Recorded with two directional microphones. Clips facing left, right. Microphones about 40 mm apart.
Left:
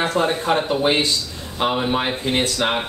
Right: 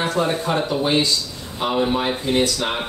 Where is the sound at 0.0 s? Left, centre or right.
Left.